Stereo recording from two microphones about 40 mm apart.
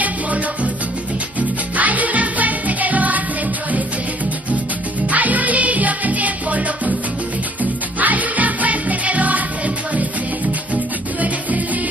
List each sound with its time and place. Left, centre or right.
1.8 s music: right
5.1 s music: right
8.0 s music: right
10.7 s music: right